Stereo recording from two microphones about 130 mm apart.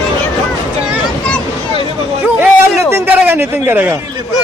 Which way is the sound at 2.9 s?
15° right (ahead or behind).